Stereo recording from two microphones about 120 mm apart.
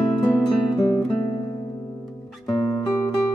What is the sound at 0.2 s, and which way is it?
Music, 35° left (ahead or behind).